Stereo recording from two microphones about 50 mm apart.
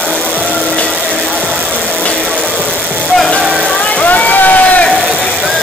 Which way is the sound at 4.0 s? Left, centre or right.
Left.